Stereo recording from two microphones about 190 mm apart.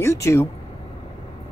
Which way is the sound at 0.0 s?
15° left (ahead or behind).